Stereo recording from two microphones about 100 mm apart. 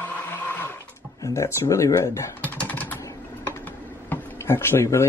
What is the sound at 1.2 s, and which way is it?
Speech, 30° left (ahead or behind).